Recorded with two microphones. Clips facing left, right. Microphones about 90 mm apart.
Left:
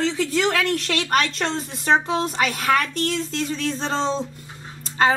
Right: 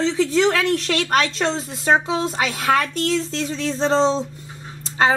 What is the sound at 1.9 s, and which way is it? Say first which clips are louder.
Speech: right 1 dB; 15° right (ahead or behind).